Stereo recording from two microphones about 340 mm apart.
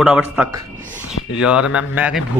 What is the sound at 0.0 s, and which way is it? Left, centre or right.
Speech, centre.